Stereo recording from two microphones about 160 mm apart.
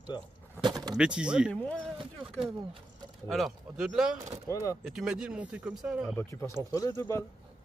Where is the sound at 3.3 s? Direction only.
Centre (ahead or behind).